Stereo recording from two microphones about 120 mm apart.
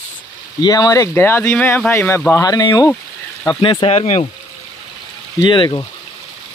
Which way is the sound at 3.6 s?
55° left (ahead or behind).